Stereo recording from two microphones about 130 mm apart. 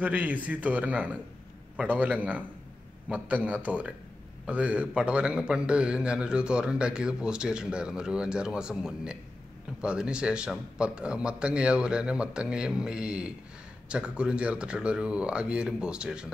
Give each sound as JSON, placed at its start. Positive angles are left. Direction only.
{"t": 0.0, "sound": "a man's voice", "side_deg": -10}